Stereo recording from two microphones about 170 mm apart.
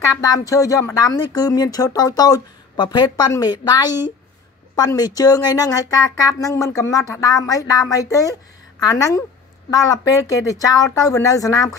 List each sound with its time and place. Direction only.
0.2 s speech: 20° left (ahead or behind)